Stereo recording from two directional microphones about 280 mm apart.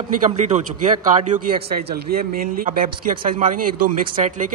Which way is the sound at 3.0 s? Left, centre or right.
Right.